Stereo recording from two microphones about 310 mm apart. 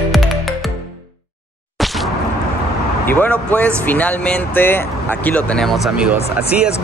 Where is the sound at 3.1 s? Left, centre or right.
Centre.